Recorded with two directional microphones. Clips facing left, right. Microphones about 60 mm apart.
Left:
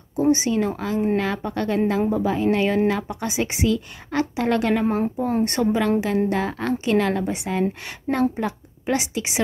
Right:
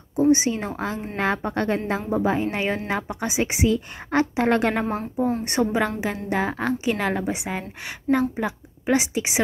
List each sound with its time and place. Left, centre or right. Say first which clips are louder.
0.3 s a woman's voice: left 3 dB; right
4.1 s a woman's voice: right 2 dB; right
5.4 s a woman's voice: left 2 dB; centre
8.9 s speech: right 2 dB; right